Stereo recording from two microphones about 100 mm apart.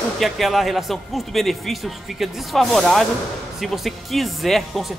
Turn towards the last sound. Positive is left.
turn(degrees=0)  # may be behind; listen again after turning